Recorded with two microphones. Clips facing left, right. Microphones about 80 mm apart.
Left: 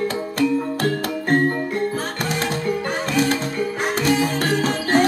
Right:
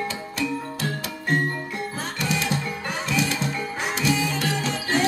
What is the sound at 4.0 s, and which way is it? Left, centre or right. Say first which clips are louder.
Music: left 4 dB; left.